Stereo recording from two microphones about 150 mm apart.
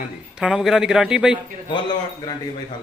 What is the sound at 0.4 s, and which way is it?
Speech, 5° right (ahead or behind).